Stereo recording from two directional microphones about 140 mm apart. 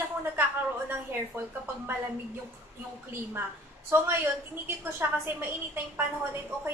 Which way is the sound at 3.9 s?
20° right (ahead or behind).